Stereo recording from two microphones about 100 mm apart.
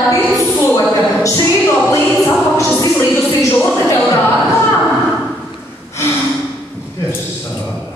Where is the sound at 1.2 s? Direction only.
30° left (ahead or behind).